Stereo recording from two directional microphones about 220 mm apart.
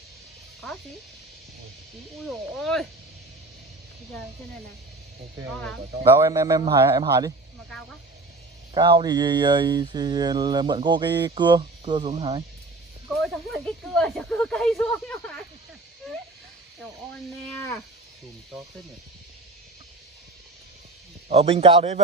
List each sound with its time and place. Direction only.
2.2 s speech: centre (ahead or behind)
5.5 s speech: 5° left (ahead or behind)
6.0 s speech: 15° right (ahead or behind)
8.7 s mantra: 20° right (ahead or behind)
13.1 s speech: centre (ahead or behind)
21.3 s mantra: 25° right (ahead or behind)